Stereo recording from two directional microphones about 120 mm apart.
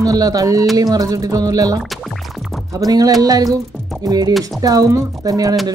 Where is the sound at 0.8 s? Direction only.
30° right (ahead or behind).